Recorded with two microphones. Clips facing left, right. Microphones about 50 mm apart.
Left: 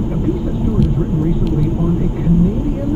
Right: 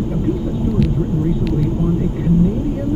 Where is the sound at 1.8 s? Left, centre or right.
Left.